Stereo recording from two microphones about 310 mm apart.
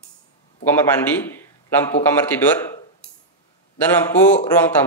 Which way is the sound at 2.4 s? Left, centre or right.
Centre.